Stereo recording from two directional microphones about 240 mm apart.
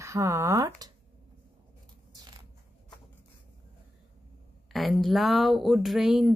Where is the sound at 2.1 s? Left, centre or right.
Centre.